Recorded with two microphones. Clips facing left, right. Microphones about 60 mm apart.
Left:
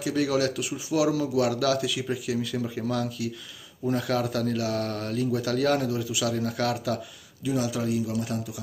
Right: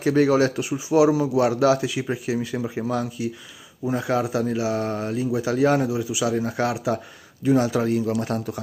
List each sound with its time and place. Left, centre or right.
0.0 s speech: right
7.4 s speech: right